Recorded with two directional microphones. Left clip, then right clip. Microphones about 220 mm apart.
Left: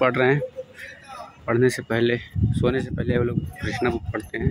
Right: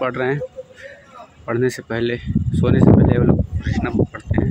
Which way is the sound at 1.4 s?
5° left (ahead or behind).